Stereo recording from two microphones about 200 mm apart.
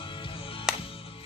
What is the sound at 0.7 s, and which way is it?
Music, centre (ahead or behind).